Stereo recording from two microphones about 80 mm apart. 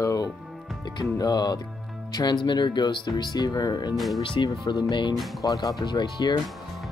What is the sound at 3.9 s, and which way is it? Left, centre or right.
Speech, centre.